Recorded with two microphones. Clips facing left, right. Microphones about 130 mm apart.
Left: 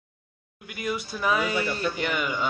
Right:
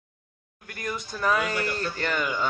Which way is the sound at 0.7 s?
10° left (ahead or behind).